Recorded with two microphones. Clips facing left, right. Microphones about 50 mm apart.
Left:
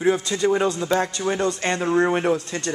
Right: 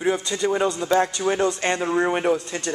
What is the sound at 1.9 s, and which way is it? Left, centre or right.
Speech, centre.